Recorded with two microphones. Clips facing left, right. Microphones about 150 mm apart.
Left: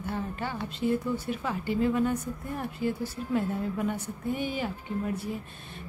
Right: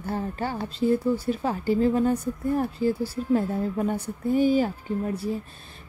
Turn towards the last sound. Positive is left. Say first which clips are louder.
# right 4 dB
turn(degrees=-35)  # may be behind; listen again after turning